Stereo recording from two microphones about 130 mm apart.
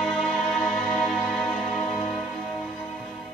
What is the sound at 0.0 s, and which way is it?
Music, 5° left (ahead or behind).